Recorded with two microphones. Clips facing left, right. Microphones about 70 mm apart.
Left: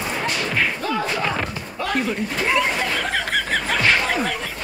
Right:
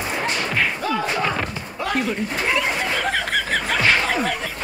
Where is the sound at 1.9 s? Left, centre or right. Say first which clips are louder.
Even; centre.